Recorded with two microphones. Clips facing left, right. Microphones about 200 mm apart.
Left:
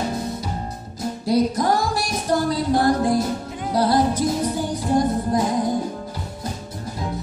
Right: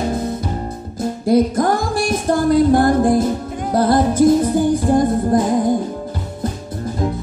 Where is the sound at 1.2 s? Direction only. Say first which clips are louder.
Right 5 dB; 50° right (ahead or behind).